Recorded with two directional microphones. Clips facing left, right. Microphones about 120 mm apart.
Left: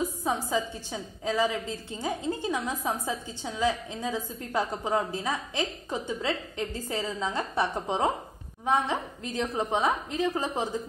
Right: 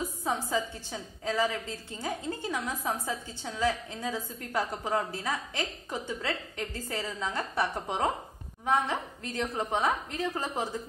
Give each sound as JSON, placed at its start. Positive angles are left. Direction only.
{"t": 0.2, "sound": "a woman's voice", "side_deg": 15}